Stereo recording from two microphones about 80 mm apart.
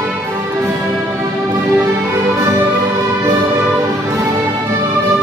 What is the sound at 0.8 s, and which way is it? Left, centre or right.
Music, centre.